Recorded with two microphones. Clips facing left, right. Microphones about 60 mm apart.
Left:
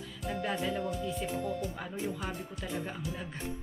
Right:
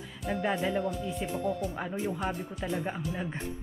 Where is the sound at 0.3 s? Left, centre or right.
Centre.